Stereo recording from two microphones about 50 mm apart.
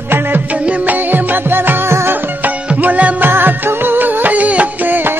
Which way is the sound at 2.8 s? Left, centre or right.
Right.